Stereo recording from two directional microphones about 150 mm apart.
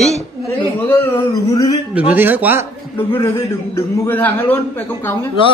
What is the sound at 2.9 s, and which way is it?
A man's voice, 15° left (ahead or behind).